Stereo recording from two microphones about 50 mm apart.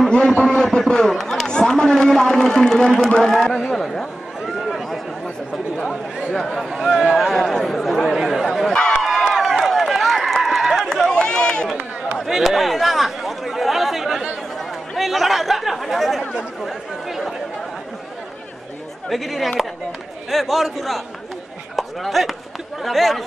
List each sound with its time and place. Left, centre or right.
0.4 s a man's voice: centre
1.1 s speech: centre
1.5 s a man's voice: centre
3.6 s a man's voice: centre
4.6 s a sound: centre
5.9 s chatter: centre
6.3 s a man's voice: centre
7.2 s chatter: centre
8.6 s run: centre
9.3 s run: centre
10.9 s run: centre
12.2 s chatter: centre
15.0 s a man's voice: centre
19.0 s a man's voice: centre